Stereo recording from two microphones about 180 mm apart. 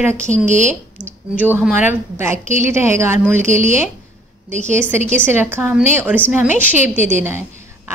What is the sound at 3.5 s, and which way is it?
Speech, 45° right (ahead or behind).